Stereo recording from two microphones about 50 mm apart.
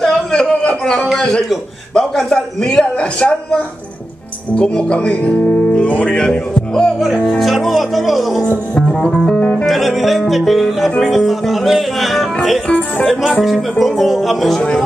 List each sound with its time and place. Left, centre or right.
0.0 s a sound: centre
1.1 s a man's voice: centre
5.9 s speech: left
7.3 s speech: centre
9.0 s speech: centre
9.7 s speech: centre